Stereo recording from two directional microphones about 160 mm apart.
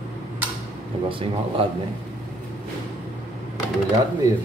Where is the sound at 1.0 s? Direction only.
35° right (ahead or behind).